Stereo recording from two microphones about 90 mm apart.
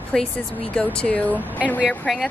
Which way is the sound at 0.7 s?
10° left (ahead or behind).